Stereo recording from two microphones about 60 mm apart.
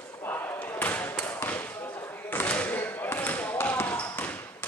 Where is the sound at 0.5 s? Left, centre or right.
Left.